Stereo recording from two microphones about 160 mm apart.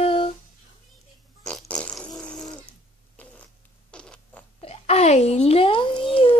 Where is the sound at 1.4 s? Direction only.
5° left (ahead or behind).